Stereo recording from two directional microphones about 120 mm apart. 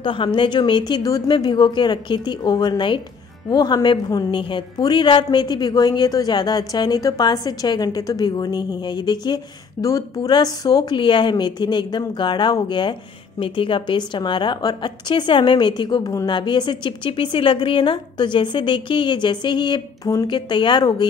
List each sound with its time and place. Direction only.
0.0 s a woman's voice: 40° left (ahead or behind)